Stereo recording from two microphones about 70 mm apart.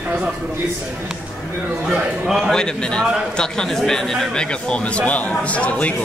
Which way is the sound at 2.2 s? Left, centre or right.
Centre.